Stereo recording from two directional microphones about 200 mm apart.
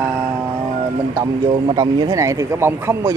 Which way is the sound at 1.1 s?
20° right (ahead or behind).